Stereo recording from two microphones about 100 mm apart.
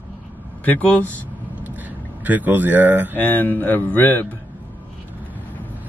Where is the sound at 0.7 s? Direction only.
15° left (ahead or behind).